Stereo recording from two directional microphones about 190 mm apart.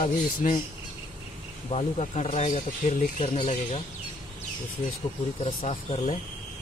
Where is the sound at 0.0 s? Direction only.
40° left (ahead or behind).